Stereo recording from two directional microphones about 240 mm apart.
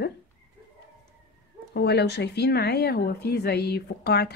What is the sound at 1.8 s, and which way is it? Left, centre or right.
A woman's voice, left.